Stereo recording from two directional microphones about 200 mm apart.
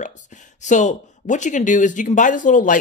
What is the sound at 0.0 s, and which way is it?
Speech, 40° left (ahead or behind).